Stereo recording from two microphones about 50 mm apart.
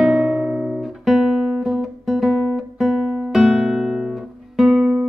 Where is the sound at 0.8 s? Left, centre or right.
Centre.